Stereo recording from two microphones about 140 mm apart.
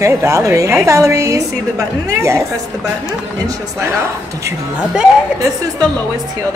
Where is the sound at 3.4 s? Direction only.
20° right (ahead or behind).